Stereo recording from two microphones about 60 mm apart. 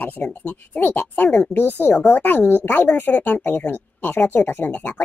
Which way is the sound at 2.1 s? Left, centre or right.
Left.